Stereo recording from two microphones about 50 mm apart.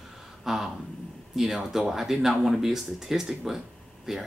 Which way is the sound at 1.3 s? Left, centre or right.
Centre.